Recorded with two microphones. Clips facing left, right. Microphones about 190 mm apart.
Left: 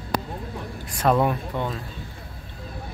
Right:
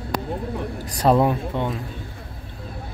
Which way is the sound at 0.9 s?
35° right (ahead or behind).